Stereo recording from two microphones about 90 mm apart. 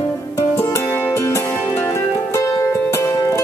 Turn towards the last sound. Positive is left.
turn(degrees=30)  # may be behind; listen again after turning